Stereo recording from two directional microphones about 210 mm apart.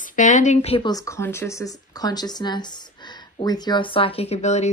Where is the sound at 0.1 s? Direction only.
35° left (ahead or behind).